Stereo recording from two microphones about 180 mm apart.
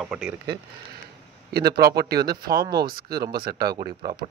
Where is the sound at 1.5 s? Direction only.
60° right (ahead or behind).